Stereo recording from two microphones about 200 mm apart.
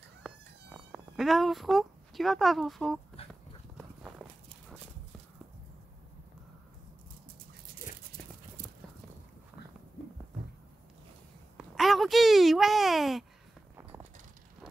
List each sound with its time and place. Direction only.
0.2 s insect: centre (ahead or behind)
3.2 s dog: 30° left (ahead or behind)
3.7 s horse: centre (ahead or behind)
11.5 s a sound: centre (ahead or behind)